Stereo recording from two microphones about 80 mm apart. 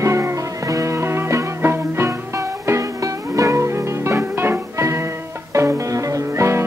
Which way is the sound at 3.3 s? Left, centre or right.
Right.